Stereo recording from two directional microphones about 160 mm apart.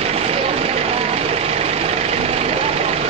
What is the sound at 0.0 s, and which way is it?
Vehicle, 40° right (ahead or behind).